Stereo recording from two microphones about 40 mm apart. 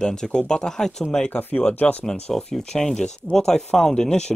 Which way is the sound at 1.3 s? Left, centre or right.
Left.